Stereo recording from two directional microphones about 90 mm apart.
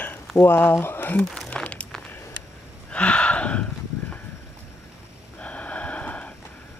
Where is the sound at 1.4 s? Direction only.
15° left (ahead or behind).